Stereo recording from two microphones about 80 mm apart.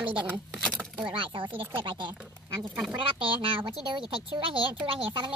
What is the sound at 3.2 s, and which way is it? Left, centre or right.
Speech, right.